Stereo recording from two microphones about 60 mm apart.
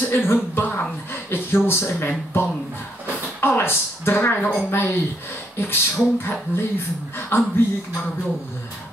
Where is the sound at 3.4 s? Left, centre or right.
Left.